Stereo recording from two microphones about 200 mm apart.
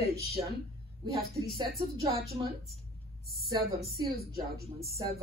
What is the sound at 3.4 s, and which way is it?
Speech, centre (ahead or behind).